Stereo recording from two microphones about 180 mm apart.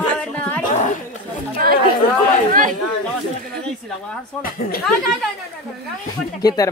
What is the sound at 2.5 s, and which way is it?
Speech, 45° right (ahead or behind).